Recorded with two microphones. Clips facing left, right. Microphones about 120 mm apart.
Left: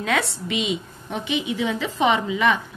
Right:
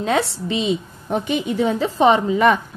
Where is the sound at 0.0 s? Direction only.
30° right (ahead or behind).